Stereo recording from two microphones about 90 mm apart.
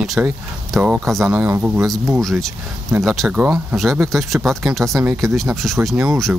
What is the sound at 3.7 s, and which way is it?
Speech, centre (ahead or behind).